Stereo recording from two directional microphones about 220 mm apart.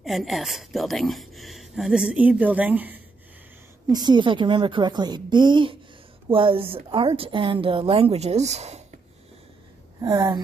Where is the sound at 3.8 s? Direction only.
20° right (ahead or behind).